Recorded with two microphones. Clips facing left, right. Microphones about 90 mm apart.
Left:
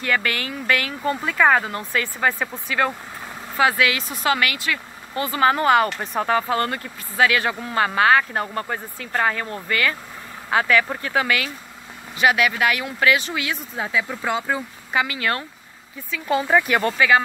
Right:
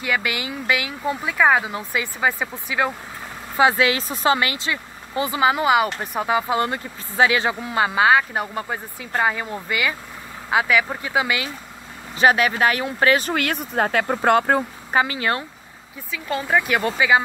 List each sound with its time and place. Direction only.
0.0 s speech: 10° right (ahead or behind)
3.5 s speech: 25° right (ahead or behind)
5.5 s speech: 10° right (ahead or behind)
12.2 s speech: 35° right (ahead or behind); by 14.6 s 55° right (ahead or behind)
14.9 s speech: 35° right (ahead or behind)
16.3 s speech: 5° left (ahead or behind)